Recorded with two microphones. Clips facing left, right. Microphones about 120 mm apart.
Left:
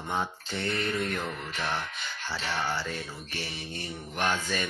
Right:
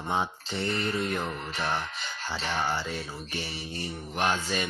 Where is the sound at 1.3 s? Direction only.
40° right (ahead or behind).